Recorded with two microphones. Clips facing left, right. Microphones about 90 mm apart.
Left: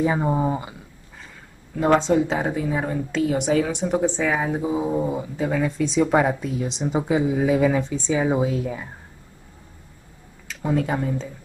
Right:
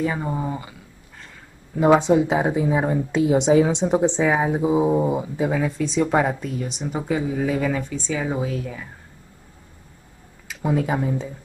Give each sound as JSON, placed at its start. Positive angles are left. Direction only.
{"t": 0.0, "sound": "speech", "side_deg": 20}
{"t": 1.8, "sound": "speech", "side_deg": -15}
{"t": 5.6, "sound": "a woman's voice", "side_deg": 0}
{"t": 6.7, "sound": "speech", "side_deg": 20}
{"t": 10.5, "sound": "speech", "side_deg": -5}